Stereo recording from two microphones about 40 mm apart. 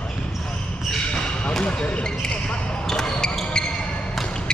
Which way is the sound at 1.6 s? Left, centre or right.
Left.